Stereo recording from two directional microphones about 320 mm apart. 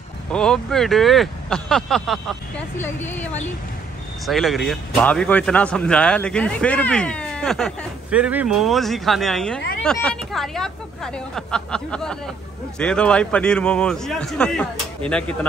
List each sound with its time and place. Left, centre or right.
0.3 s speech: centre
4.3 s speech: centre